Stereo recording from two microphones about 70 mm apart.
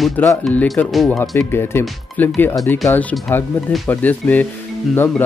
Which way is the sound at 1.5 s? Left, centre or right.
Left.